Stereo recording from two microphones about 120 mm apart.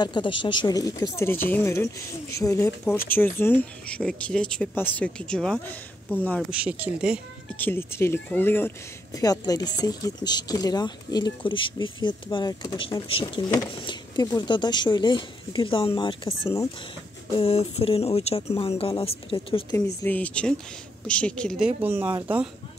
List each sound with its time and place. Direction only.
0.0 s speech: 40° left (ahead or behind)
1.1 s a woman's voice: 20° left (ahead or behind)
6.5 s speech: 10° right (ahead or behind)
7.5 s a woman's voice: 15° left (ahead or behind)
9.1 s speech: 30° left (ahead or behind); by 19.6 s 50° left (ahead or behind)
20.0 s speech: 15° left (ahead or behind)
21.5 s speech: 15° right (ahead or behind)